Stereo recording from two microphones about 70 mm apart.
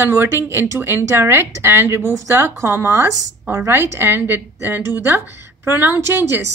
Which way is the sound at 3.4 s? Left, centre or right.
Right.